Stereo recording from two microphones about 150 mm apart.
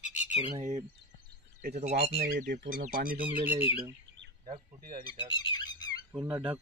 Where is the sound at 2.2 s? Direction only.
80° right.